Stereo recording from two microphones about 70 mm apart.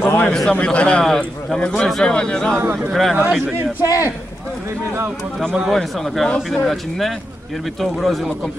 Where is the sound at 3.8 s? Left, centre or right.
Left.